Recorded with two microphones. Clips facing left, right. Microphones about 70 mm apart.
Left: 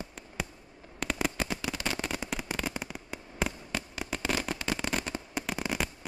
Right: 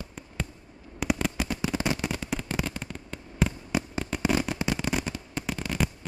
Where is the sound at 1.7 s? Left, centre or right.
Right.